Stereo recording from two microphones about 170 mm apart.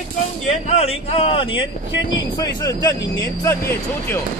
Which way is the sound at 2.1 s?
20° left (ahead or behind).